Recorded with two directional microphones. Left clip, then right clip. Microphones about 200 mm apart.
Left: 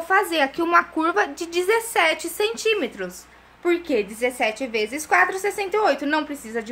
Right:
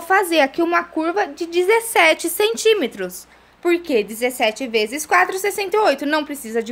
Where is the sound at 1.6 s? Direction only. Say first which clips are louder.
Right 5 dB; 35° right (ahead or behind).